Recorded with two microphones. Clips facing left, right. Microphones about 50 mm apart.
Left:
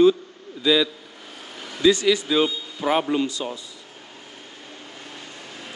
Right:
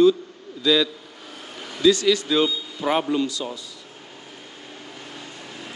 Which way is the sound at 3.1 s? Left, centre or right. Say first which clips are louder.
Even; left.